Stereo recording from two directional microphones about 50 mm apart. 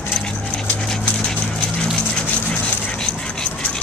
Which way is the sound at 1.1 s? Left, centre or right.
Centre.